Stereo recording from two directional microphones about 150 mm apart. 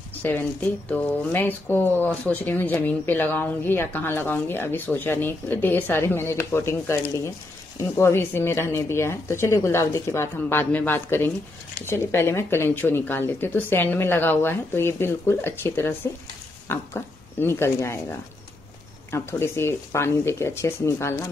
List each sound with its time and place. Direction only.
0.2 s speech: 10° left (ahead or behind)
19.0 s speech: 15° left (ahead or behind)